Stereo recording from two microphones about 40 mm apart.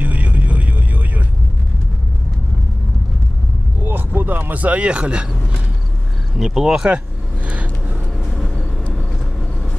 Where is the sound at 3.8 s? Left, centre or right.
Right.